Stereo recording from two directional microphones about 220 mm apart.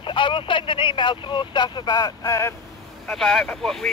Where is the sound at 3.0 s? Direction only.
Centre (ahead or behind).